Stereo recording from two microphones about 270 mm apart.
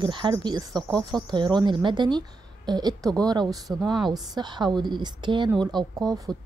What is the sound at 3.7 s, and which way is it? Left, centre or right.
Speech, centre.